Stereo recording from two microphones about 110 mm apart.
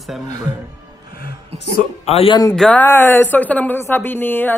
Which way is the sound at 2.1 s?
65° left (ahead or behind).